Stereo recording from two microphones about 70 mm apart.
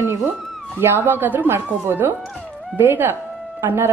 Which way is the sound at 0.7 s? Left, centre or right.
Right.